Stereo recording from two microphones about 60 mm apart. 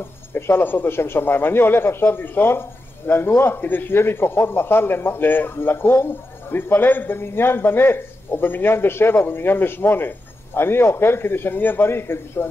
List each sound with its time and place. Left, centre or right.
0.3 s a man's voice: left